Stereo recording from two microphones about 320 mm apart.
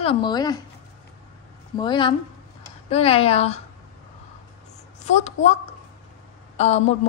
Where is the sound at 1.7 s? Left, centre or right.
Centre.